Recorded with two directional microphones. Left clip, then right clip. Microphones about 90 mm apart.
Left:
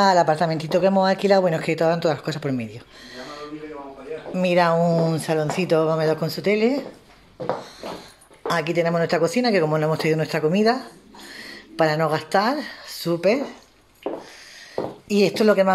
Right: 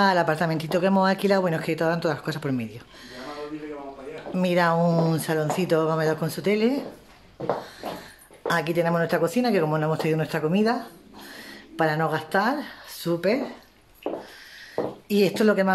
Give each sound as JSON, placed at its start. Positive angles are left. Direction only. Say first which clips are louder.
{"t": 0.0, "sound": "speech", "louder": "left 4 dB", "side_deg": 5}
{"t": 1.6, "sound": "speech", "louder": "left 4 dB", "side_deg": 15}
{"t": 4.7, "sound": "speech", "louder": "left 3 dB", "side_deg": -10}
{"t": 5.1, "sound": "speech", "louder": "left 2 dB", "side_deg": 10}
{"t": 8.5, "sound": "speech", "louder": "left 2 dB", "side_deg": 10}
{"t": 15.0, "sound": "speech", "louder": "left 3 dB", "side_deg": 10}